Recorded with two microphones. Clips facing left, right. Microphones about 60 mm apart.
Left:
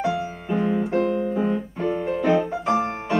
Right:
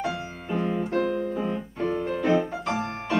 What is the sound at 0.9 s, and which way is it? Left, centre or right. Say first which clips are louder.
Piano: left 2 dB; left.